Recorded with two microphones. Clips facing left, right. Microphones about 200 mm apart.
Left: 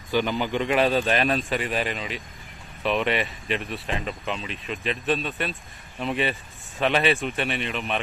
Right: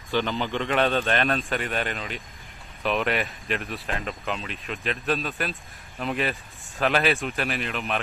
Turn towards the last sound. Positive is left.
turn(degrees=0)  # may be behind; listen again after turning